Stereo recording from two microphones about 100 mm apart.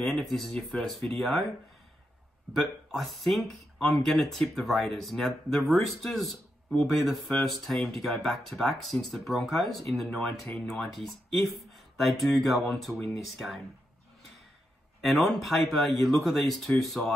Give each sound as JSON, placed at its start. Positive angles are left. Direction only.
{"t": 0.0, "sound": "speech", "side_deg": 0}
{"t": 2.5, "sound": "speech", "side_deg": 0}
{"t": 15.0, "sound": "speech", "side_deg": 0}